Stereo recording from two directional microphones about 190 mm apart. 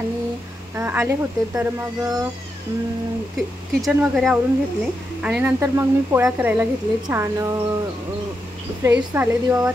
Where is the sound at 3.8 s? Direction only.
Centre (ahead or behind).